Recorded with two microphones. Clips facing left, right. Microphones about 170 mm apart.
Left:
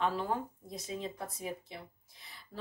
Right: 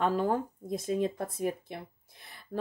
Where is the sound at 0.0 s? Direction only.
45° right (ahead or behind).